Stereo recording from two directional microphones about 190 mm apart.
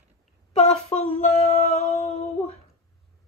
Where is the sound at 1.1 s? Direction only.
35° left (ahead or behind).